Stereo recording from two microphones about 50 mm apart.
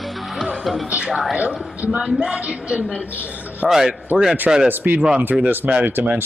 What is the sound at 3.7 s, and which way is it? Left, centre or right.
Speech, centre.